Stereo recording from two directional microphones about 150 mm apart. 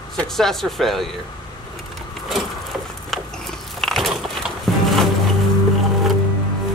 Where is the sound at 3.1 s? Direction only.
Centre (ahead or behind).